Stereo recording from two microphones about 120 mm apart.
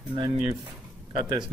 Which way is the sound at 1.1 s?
45° right (ahead or behind).